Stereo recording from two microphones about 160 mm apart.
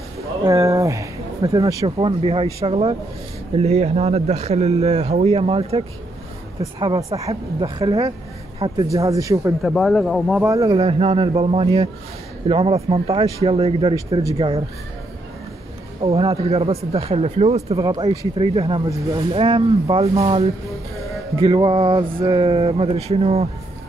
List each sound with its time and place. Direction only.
0.4 s speech: 20° right (ahead or behind)
1.9 s speech: 35° right (ahead or behind)
6.6 s speech: 25° right (ahead or behind)
9.6 s speech: centre (ahead or behind)
10.4 s speech: 20° right (ahead or behind)
10.8 s speech: 35° right (ahead or behind)
13.9 s speech: 20° right (ahead or behind)
14.3 s speech: 35° right (ahead or behind)
16.0 s speech: 35° right (ahead or behind)
17.7 s speech: 25° right (ahead or behind)
18.4 s speech: 35° right (ahead or behind)